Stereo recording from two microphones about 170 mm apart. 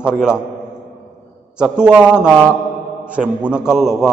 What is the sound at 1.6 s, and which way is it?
A man's voice, 5° right (ahead or behind).